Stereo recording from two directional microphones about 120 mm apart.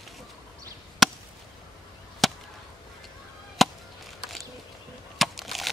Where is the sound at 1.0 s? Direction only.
Centre (ahead or behind).